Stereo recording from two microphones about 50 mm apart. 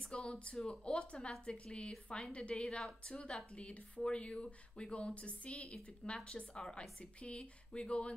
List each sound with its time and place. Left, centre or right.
0.0 s a woman's voice: centre